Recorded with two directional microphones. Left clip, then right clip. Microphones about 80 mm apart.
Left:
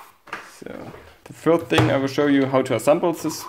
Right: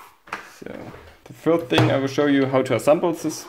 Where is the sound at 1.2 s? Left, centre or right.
Left.